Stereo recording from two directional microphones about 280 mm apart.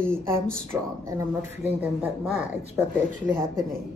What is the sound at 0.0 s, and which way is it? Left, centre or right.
Speech, centre.